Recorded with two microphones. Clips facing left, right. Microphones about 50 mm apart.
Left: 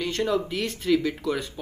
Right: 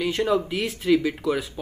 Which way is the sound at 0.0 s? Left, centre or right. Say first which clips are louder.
Right 3 dB; centre.